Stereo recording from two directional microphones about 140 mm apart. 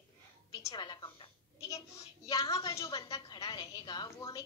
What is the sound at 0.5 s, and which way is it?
Speech, 25° left (ahead or behind).